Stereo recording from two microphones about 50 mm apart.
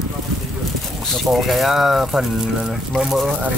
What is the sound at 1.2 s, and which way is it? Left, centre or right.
Speech, centre.